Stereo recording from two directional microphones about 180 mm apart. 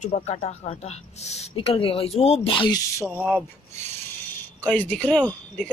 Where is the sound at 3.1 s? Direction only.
5° right (ahead or behind).